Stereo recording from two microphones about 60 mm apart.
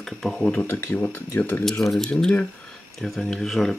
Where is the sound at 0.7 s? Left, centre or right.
Left.